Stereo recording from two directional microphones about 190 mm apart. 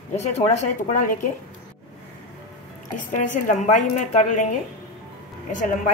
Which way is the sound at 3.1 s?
40° left (ahead or behind).